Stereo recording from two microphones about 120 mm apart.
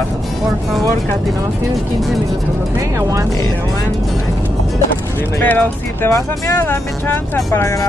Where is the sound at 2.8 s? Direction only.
25° right (ahead or behind).